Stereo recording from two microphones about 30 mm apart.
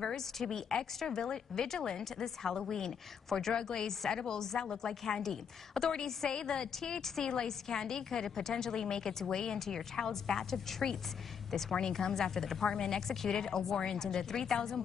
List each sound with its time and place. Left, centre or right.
0.0 s a woman's voice: centre